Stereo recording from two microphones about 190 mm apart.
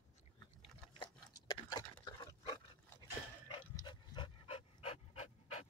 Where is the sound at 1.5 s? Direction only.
20° left (ahead or behind).